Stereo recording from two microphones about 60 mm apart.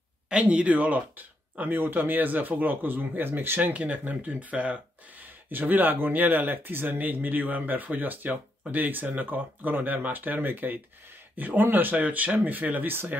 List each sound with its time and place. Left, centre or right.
0.3 s speech: centre; by 13.2 s right